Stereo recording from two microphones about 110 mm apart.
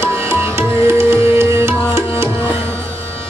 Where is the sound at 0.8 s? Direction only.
25° right (ahead or behind).